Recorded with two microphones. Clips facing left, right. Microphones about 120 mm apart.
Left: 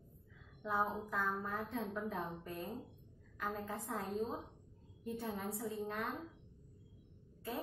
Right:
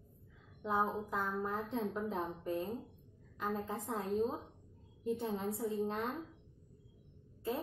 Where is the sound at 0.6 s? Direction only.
20° right (ahead or behind).